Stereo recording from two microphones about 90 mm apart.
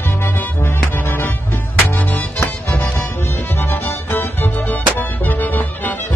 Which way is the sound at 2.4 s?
30° left (ahead or behind).